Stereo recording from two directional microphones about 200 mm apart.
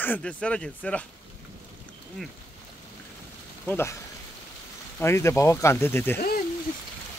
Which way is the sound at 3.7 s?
10° left (ahead or behind).